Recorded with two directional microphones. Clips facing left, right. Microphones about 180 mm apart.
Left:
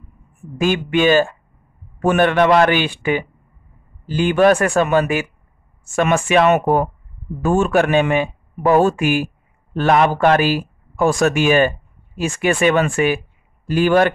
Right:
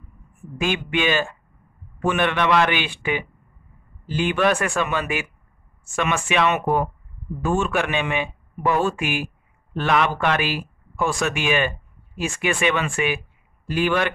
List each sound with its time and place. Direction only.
0.6 s speech: 40° left (ahead or behind)